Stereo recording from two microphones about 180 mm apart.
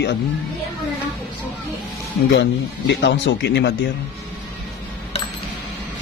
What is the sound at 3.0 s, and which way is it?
Speech, 85° left.